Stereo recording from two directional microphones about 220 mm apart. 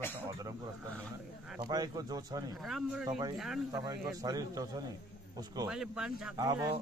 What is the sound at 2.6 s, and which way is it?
Speech, centre (ahead or behind).